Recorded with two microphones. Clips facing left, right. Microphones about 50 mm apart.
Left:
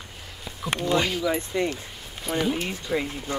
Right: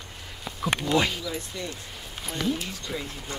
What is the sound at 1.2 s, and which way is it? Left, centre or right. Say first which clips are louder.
Speech: left 9 dB; left.